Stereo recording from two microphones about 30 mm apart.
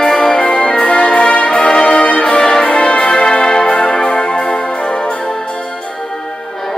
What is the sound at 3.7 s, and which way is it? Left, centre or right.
Music, left.